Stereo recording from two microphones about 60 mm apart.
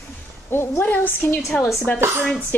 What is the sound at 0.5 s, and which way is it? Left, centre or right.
Speech, left.